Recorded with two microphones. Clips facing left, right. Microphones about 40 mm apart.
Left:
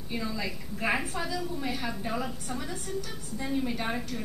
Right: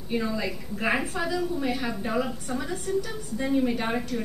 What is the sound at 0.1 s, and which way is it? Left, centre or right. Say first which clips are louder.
A woman's voice: right 6 dB; centre.